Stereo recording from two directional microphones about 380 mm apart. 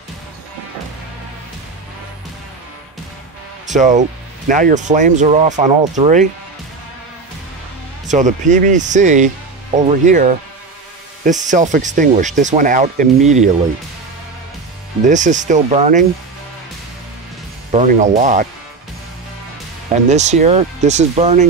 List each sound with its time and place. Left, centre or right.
3.6 s speech: centre
8.1 s speech: centre
15.0 s speech: centre
17.6 s speech: centre
19.9 s speech: centre